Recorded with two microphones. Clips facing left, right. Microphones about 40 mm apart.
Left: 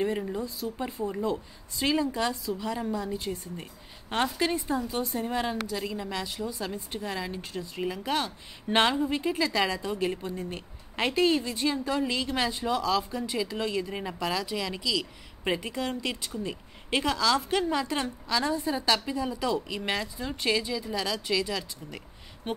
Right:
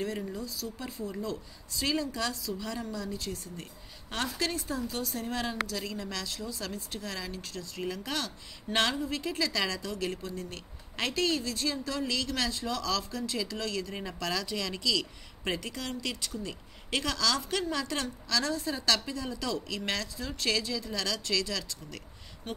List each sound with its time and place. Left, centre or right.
0.0 s a woman's voice: left